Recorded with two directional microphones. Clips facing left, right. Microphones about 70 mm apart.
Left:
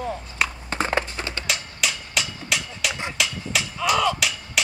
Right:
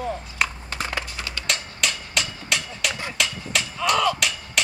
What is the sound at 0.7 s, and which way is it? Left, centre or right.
Horse, left.